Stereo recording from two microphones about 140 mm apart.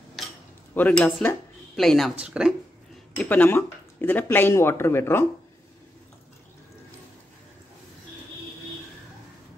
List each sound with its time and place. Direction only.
0.7 s speech: 10° left (ahead or behind); by 2.5 s 5° right (ahead or behind)
3.2 s speech: 10° left (ahead or behind)